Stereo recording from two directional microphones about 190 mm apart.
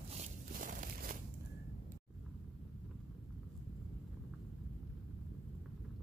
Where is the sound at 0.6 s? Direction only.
45° right (ahead or behind).